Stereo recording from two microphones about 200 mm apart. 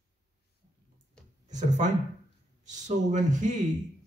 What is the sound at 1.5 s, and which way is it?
Speech, 35° right (ahead or behind).